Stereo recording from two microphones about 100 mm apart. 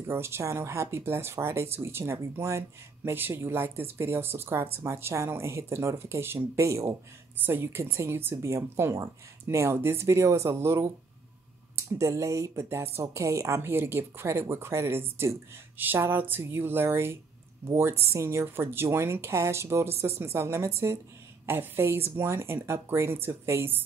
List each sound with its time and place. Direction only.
0.1 s speech: 25° right (ahead or behind)